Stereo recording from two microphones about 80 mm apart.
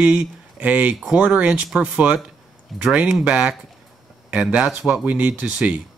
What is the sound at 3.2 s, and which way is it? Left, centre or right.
Speech, centre.